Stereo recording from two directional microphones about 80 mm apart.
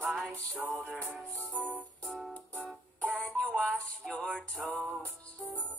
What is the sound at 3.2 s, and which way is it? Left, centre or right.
Music, centre.